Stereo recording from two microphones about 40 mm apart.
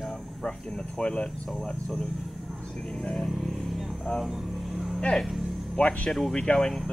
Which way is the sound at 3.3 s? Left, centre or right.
Centre.